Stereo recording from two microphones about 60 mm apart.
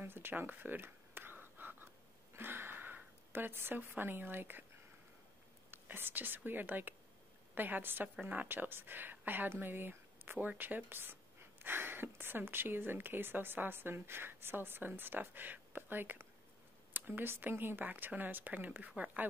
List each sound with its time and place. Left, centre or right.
0.0 s whispering: right
2.3 s speech: right
5.7 s speech: right